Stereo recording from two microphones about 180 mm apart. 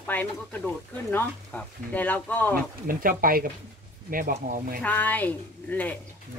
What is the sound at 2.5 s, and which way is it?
Speech, 50° right (ahead or behind).